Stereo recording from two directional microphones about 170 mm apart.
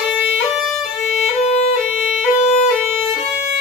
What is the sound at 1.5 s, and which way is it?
Violin, 40° left (ahead or behind).